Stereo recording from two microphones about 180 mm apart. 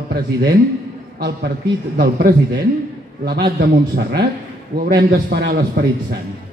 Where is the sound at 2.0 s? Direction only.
55° right (ahead or behind).